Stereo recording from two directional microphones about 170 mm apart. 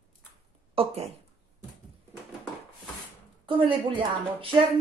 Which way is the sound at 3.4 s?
30° right (ahead or behind).